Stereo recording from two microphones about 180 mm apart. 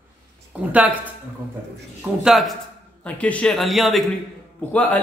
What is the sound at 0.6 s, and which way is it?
Speech, 10° right (ahead or behind).